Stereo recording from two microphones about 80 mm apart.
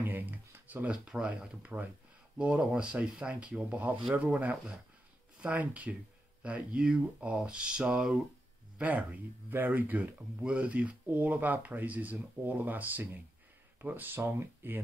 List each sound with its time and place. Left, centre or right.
0.0 s speech: right